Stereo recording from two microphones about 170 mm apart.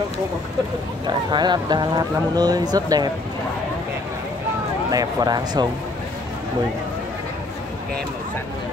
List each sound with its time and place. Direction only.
1.0 s speech: 25° right (ahead or behind)
4.9 s speech: 25° right (ahead or behind)